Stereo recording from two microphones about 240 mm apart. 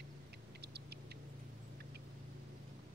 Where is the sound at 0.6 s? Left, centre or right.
Right.